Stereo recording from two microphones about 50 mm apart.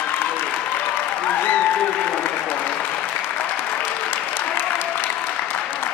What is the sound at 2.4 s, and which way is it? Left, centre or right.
Applause, left.